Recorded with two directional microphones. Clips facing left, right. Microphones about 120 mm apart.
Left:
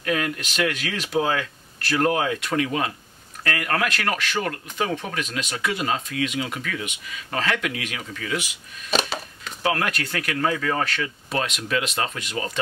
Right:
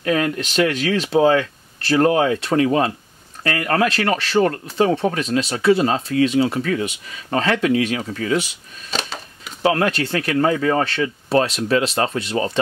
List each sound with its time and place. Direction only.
0.0 s speech: 30° right (ahead or behind)
9.6 s speech: 30° right (ahead or behind)